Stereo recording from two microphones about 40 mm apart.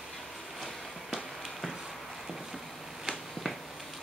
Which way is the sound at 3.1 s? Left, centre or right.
Centre.